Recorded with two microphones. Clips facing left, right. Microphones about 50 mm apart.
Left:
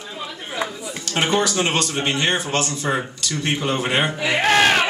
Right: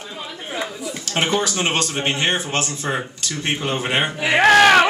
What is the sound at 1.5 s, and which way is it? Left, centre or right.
A man's voice, right.